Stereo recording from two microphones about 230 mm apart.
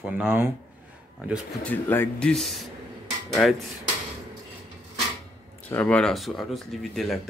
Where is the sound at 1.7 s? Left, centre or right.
Centre.